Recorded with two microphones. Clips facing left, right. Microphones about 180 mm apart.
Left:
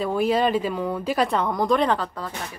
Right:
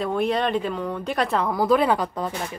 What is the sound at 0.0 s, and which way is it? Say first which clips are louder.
Speech: left 2 dB; centre (ahead or behind).